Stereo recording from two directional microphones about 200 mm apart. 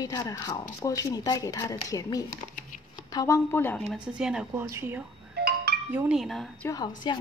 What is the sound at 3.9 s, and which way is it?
A woman's voice, 5° right (ahead or behind).